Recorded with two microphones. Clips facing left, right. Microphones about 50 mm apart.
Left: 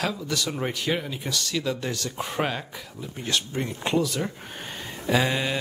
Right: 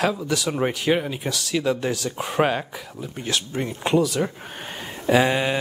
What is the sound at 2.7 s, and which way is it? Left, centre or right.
Speech, centre.